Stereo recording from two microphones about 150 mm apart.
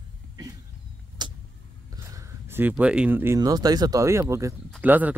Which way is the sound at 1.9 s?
20° right (ahead or behind).